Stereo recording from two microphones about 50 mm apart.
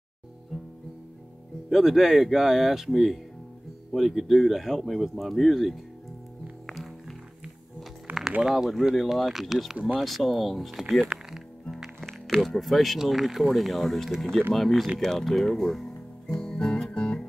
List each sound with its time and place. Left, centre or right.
0.5 s music: centre
1.7 s speech: centre
6.6 s music: centre
8.4 s speech: centre
10.8 s a sound: centre
11.7 s speech: centre
16.3 s guitar: centre
16.9 s music: centre